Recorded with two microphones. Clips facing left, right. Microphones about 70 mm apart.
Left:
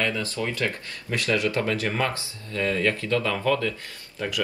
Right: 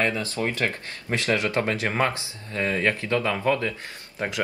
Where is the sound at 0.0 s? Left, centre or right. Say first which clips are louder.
Right 2 dB; right.